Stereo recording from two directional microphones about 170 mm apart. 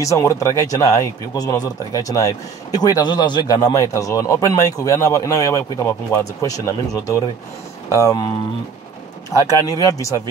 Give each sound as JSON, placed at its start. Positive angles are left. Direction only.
{"t": 0.0, "sound": "speech", "side_deg": 20}
{"t": 9.3, "sound": "speech", "side_deg": 20}